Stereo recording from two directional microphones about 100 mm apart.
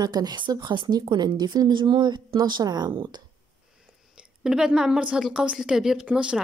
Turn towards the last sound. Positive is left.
turn(degrees=-10)  # may be behind; listen again after turning